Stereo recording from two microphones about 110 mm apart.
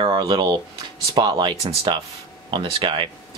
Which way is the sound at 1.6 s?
60° right (ahead or behind).